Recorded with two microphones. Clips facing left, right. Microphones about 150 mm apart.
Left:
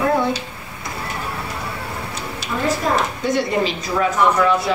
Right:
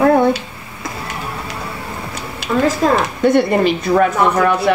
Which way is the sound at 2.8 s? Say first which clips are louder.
Right 7 dB; 90° right.